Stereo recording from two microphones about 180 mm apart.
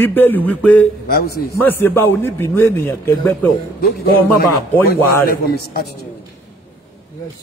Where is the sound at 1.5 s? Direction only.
10° left (ahead or behind).